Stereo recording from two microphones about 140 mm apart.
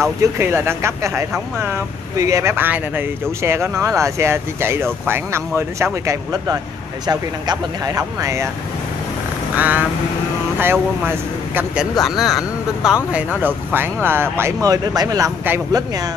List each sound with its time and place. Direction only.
0.2 s speech: 20° right (ahead or behind)
9.6 s speech: 10° right (ahead or behind)